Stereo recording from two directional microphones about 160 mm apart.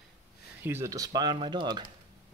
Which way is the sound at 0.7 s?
15° right (ahead or behind).